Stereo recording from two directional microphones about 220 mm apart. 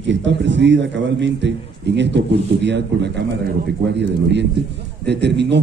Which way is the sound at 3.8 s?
50° right (ahead or behind).